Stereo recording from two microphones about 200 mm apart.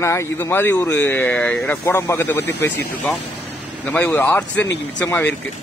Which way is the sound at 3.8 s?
10° left (ahead or behind).